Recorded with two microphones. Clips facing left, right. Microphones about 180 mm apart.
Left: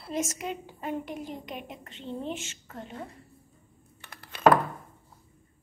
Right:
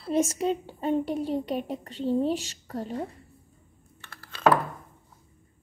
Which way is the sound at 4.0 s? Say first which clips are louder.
Left 1 dB; 20° left (ahead or behind).